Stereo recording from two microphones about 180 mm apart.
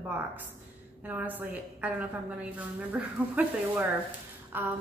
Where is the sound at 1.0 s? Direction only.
10° right (ahead or behind).